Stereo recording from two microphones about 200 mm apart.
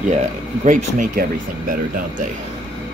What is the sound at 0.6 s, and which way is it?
Speech, 40° right (ahead or behind).